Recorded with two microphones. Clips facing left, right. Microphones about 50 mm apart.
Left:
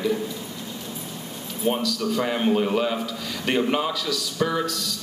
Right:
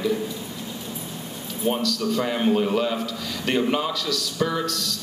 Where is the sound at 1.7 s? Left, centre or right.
Centre.